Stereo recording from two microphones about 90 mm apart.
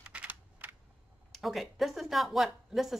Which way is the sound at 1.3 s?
Centre (ahead or behind).